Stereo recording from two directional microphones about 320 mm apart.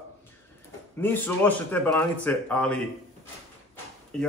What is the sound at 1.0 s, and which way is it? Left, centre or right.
Speech, centre.